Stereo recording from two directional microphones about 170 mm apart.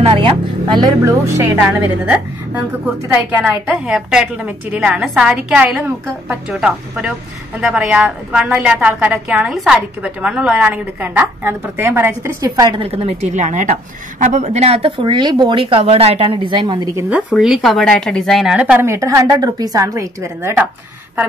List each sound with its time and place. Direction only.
0.0 s a sound: 30° right (ahead or behind)
1.0 s a woman's voice: 15° right (ahead or behind)
17.1 s a woman's voice: 5° right (ahead or behind)